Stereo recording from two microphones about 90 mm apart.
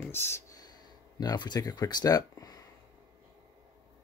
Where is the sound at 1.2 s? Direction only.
50° left (ahead or behind).